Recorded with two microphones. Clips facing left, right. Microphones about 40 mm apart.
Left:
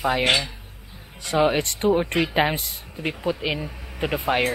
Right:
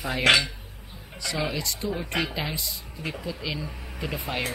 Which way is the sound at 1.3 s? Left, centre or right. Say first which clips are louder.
Left 10 dB; left.